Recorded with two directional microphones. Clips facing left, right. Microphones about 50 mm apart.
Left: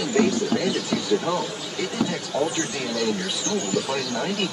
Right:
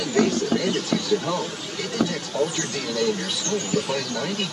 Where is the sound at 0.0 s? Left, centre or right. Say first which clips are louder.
Even; centre.